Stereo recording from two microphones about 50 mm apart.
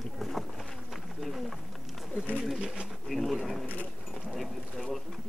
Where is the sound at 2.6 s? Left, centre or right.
Centre.